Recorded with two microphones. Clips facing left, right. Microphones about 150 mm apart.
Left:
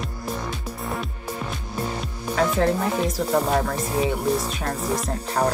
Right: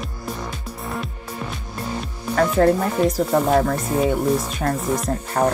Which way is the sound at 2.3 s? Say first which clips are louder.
Right 4 dB; 50° right (ahead or behind).